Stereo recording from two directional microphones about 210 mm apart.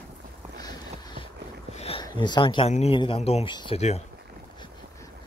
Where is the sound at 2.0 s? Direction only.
20° left (ahead or behind).